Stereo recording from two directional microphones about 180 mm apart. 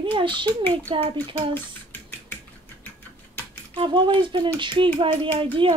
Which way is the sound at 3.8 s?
25° right (ahead or behind).